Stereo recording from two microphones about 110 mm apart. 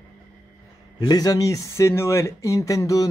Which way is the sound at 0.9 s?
35° left (ahead or behind).